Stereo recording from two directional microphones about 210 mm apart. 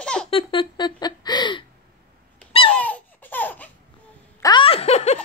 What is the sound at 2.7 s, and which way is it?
Laughter, 5° left (ahead or behind).